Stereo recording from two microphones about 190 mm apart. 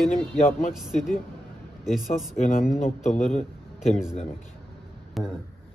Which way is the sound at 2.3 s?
35° left (ahead or behind).